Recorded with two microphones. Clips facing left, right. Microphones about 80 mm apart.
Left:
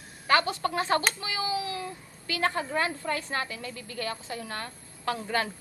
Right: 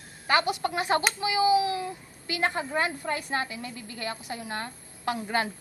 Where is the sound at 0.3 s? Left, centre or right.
Centre.